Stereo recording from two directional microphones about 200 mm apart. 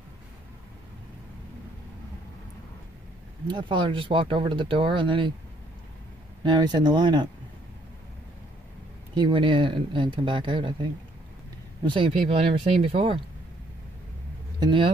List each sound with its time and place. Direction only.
3.4 s speech: 25° right (ahead or behind)
6.4 s speech: 20° right (ahead or behind)
9.1 s speech: 25° right (ahead or behind)
11.8 s speech: 25° right (ahead or behind)
14.6 s speech: 25° right (ahead or behind)